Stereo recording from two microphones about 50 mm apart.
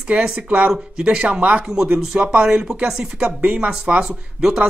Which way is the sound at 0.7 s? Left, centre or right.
Centre.